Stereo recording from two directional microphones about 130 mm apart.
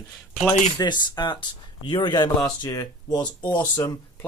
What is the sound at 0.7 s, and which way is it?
Speech, 35° left (ahead or behind).